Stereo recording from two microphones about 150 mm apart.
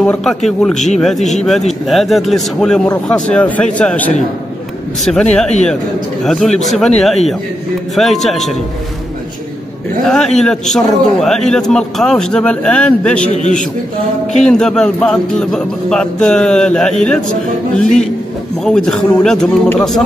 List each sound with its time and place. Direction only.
0.0 s a man's voice: 5° left (ahead or behind)
0.7 s a man's voice: 50° left (ahead or behind)
1.0 s a man's voice: centre (ahead or behind)
7.9 s a man's voice: centre (ahead or behind)
10.0 s a man's voice: 5° left (ahead or behind)
13.3 s a man's voice: 55° left (ahead or behind)
14.3 s a man's voice: 5° left (ahead or behind)
17.8 s a man's voice: 55° left (ahead or behind)
18.6 s a man's voice: 5° left (ahead or behind)